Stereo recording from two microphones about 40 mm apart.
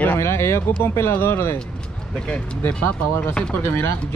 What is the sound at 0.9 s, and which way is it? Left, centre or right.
Speech, left.